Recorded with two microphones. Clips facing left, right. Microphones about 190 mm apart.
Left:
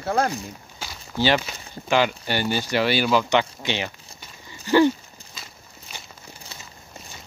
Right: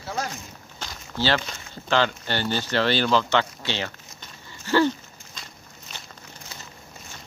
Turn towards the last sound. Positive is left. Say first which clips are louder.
# left 1 dB
turn(degrees=5)  # may be behind; listen again after turning